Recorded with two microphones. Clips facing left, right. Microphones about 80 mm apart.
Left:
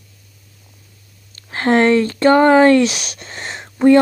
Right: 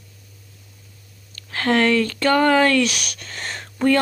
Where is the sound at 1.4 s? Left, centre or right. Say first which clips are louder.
Left 5 dB; left.